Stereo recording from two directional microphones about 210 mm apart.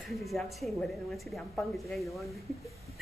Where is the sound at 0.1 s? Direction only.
Centre (ahead or behind).